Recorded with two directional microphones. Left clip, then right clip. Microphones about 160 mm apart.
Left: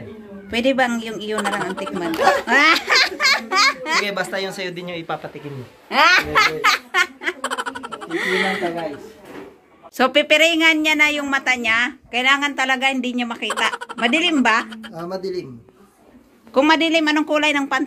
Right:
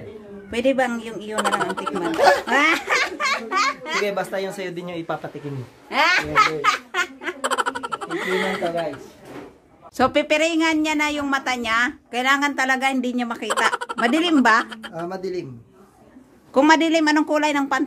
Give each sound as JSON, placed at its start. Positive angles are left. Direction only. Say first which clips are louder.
{"t": 0.5, "sound": "speech", "louder": "left 2 dB", "side_deg": -10}
{"t": 3.2, "sound": "a sound", "louder": "left 5 dB", "side_deg": 20}
{"t": 4.0, "sound": "speech", "louder": "left 1 dB", "side_deg": -20}
{"t": 5.9, "sound": "a child's voice", "louder": "left 4 dB", "side_deg": 40}
{"t": 6.6, "sound": "laughter", "louder": "left 4 dB", "side_deg": 5}
{"t": 9.9, "sound": "speech", "louder": "left 4 dB", "side_deg": -10}
{"t": 13.5, "sound": "speech", "louder": "right 2 dB", "side_deg": 0}
{"t": 14.0, "sound": "speech", "louder": "left 1 dB", "side_deg": -25}
{"t": 14.7, "sound": "speech", "louder": "right 1 dB", "side_deg": 0}
{"t": 15.0, "sound": "speech", "louder": "left 3 dB", "side_deg": -20}
{"t": 16.5, "sound": "speech", "louder": "even", "side_deg": -25}